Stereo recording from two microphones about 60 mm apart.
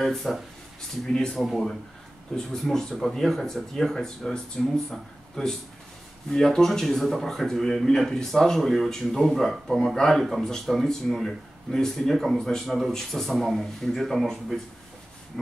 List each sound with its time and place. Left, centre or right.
0.0 s a man's voice: centre